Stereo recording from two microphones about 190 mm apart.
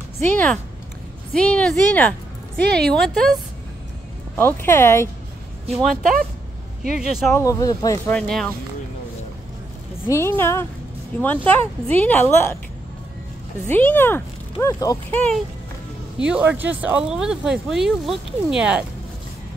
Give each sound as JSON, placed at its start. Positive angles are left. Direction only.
{"t": 0.2, "sound": "speech", "side_deg": 10}
{"t": 4.4, "sound": "speech", "side_deg": 10}
{"t": 5.7, "sound": "speech", "side_deg": 0}
{"t": 7.0, "sound": "speech", "side_deg": 0}
{"t": 7.2, "sound": "speech", "side_deg": 15}
{"t": 8.1, "sound": "speech", "side_deg": 5}
{"t": 10.0, "sound": "speech", "side_deg": 15}
{"t": 13.7, "sound": "speech", "side_deg": 10}
{"t": 16.2, "sound": "speech", "side_deg": -5}